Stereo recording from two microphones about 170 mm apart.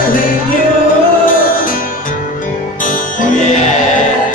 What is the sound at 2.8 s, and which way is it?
Music, 50° left (ahead or behind).